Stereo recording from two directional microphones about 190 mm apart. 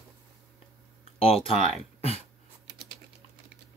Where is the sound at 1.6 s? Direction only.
30° left (ahead or behind).